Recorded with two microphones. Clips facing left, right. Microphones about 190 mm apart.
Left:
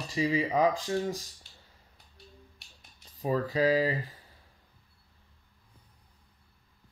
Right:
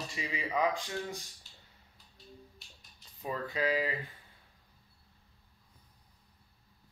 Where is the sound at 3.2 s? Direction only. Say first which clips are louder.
Left 7 dB; 35° left (ahead or behind).